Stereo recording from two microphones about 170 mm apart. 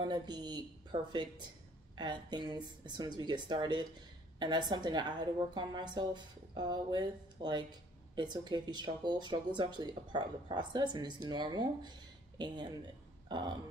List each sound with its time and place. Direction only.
0.0 s speech: 25° right (ahead or behind)